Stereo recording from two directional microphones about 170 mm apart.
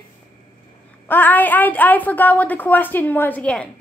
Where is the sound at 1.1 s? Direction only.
10° left (ahead or behind).